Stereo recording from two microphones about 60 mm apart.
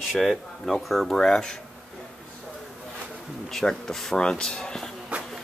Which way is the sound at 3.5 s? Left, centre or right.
Centre.